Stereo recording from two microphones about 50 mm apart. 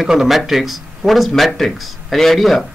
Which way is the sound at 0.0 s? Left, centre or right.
Centre.